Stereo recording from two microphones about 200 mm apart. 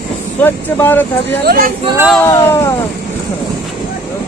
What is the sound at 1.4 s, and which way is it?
Speech, 50° right (ahead or behind).